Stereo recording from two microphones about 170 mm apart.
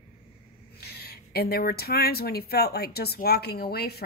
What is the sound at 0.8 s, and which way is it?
Speech, 65° left (ahead or behind).